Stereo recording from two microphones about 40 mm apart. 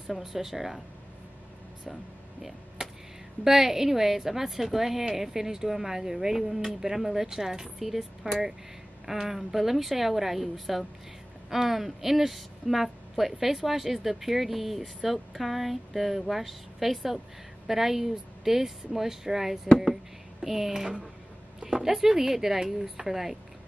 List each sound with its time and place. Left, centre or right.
0.0 s a woman's voice: centre
3.4 s a woman's voice: centre